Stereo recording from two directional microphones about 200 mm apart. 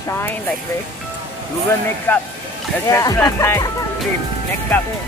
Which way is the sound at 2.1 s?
10° left (ahead or behind).